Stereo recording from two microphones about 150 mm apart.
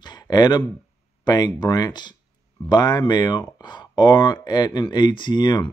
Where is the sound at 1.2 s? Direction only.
25° left (ahead or behind).